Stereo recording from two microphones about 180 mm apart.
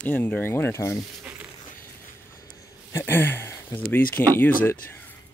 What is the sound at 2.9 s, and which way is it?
Speech, 10° left (ahead or behind).